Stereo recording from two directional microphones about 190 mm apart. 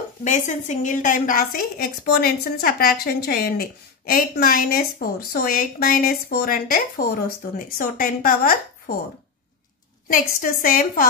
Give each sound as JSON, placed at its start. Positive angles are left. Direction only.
{"t": 0.2, "sound": "a woman's voice", "side_deg": 40}
{"t": 10.0, "sound": "a woman's voice", "side_deg": 45}